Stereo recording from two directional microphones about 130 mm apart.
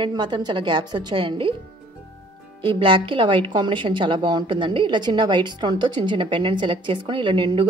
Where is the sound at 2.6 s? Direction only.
40° right (ahead or behind).